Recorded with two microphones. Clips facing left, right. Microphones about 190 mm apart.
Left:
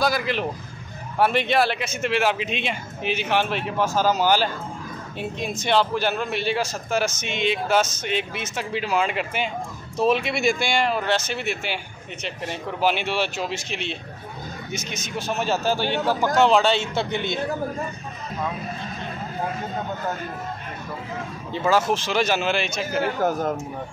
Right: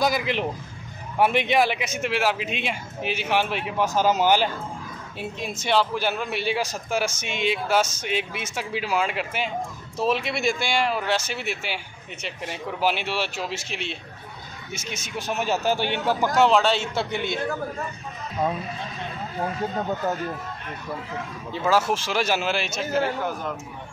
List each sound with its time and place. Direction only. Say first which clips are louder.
0.0 s a man's voice: even; 20° right (ahead or behind)
5.4 s a man's voice: left 1 dB; 5° right (ahead or behind)
15.0 s a man's voice: left 1 dB; 15° right (ahead or behind)
16.3 s speech: left 1 dB; centre (ahead or behind)
21.6 s speech: left 1 dB; 5° right (ahead or behind)